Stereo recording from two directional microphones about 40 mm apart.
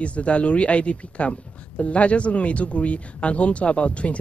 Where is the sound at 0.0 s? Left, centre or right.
Left.